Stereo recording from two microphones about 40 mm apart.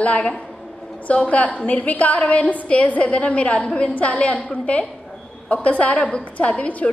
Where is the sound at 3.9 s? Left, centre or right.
Left.